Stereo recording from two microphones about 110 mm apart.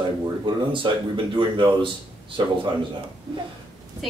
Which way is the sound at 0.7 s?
50° right (ahead or behind).